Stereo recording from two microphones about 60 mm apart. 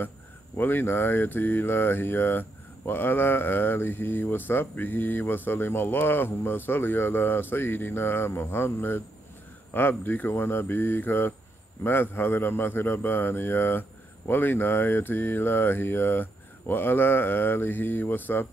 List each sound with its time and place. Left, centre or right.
0.6 s a man's voice: left